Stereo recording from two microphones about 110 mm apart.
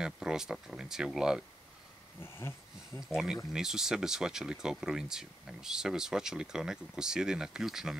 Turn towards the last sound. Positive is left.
turn(degrees=-5)  # may be behind; listen again after turning